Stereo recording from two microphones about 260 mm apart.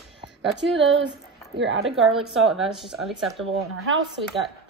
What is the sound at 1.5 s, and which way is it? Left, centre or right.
Speech, right.